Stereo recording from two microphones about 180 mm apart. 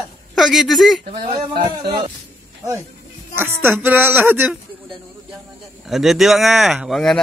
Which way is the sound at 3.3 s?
10° right (ahead or behind).